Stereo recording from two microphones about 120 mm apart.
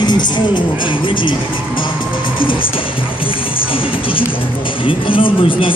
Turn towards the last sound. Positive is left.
turn(degrees=45)  # may be behind; listen again after turning